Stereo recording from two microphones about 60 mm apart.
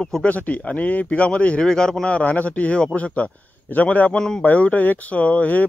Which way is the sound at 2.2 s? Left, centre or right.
Left.